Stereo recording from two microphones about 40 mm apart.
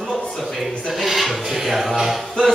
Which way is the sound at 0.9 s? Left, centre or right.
Centre.